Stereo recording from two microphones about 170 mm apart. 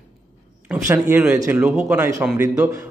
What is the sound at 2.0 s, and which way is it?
Speech, 20° right (ahead or behind).